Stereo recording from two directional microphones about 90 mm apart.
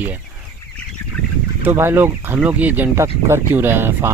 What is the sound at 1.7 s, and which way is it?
Speech, 25° right (ahead or behind).